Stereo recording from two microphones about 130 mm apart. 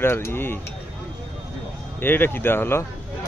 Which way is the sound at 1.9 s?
15° left (ahead or behind).